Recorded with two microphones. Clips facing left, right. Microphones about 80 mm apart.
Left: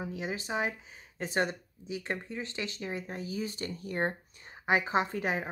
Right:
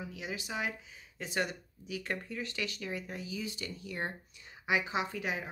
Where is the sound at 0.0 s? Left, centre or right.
Left.